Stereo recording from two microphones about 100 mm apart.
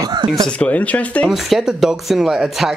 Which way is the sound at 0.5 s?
15° left (ahead or behind).